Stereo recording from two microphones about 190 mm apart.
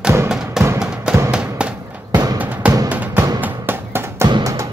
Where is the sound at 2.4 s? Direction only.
5° right (ahead or behind).